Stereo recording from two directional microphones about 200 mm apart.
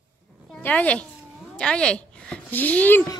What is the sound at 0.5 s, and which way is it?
A child's voice, 5° left (ahead or behind).